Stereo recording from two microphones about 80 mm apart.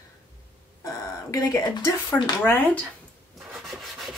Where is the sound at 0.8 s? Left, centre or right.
Left.